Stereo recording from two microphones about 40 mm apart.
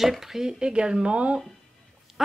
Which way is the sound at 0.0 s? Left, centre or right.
Centre.